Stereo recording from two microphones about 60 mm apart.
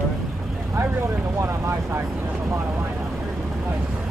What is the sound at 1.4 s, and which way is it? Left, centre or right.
Speech, right.